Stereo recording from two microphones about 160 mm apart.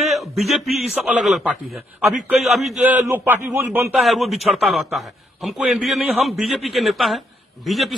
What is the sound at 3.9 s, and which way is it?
A man's voice, centre (ahead or behind).